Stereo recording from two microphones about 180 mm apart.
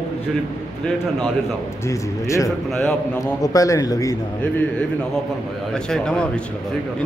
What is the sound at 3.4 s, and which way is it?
Speech, 20° left (ahead or behind).